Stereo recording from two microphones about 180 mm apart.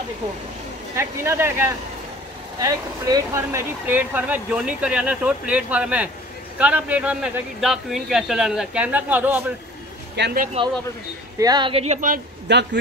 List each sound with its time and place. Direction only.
0.9 s speech: 15° right (ahead or behind)
10.1 s speech: 70° right (ahead or behind)
11.3 s a woman's voice: 20° right (ahead or behind); by 12.2 s 45° right (ahead or behind)
12.5 s speech: 75° right (ahead or behind)